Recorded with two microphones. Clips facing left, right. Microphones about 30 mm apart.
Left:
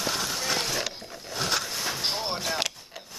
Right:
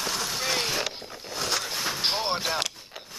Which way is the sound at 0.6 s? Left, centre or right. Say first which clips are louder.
Right 1 dB; centre.